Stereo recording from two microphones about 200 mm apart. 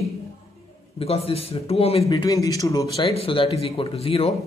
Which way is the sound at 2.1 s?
15° left (ahead or behind).